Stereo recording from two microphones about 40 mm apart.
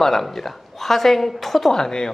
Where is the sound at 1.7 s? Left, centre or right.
Centre.